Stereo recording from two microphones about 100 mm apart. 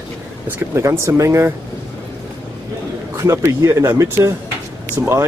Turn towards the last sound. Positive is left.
turn(degrees=-25)  # may be behind; listen again after turning